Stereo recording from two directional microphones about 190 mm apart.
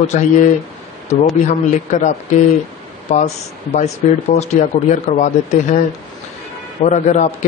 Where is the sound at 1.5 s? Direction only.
40° left (ahead or behind).